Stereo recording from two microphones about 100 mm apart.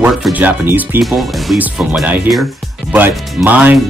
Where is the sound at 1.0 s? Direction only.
Centre (ahead or behind).